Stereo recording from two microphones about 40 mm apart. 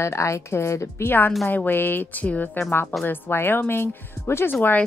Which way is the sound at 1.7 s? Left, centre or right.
Left.